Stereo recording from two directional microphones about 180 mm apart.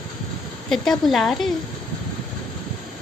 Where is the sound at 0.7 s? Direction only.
Centre (ahead or behind).